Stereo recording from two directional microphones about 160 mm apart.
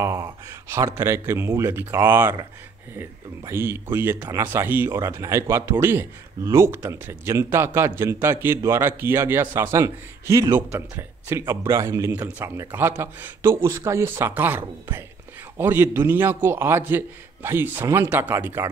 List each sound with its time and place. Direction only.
0.0 s speech: 15° right (ahead or behind)